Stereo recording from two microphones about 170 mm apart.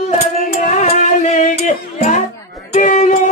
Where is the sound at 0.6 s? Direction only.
45° left (ahead or behind).